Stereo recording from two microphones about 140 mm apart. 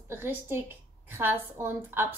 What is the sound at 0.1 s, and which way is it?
A woman's voice, 15° right (ahead or behind).